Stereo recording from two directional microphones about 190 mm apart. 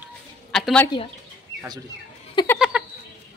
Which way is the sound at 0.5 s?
Centre (ahead or behind).